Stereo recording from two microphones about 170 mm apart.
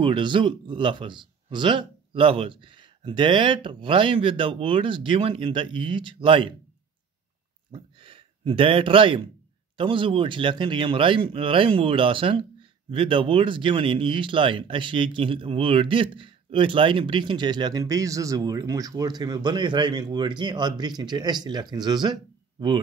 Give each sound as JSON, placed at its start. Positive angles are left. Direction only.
{"t": 0.0, "sound": "speech", "side_deg": -30}
{"t": 7.7, "sound": "speech", "side_deg": -30}